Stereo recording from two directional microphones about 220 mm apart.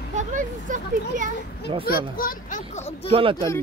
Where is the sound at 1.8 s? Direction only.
40° left (ahead or behind).